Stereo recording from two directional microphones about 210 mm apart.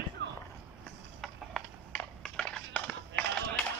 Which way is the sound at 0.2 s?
50° right (ahead or behind).